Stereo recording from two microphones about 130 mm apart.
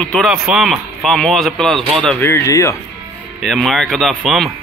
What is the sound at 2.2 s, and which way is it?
Speech, 20° left (ahead or behind).